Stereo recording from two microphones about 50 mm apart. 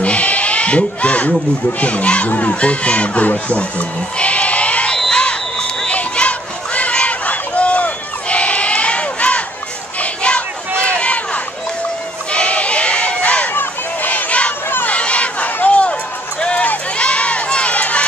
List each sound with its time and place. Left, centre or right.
0.0 s bleat: left
1.8 s speech: left
5.1 s crowd: centre
10.8 s a sound: left
12.3 s crowd: left
13.5 s a sound: left
14.9 s run: left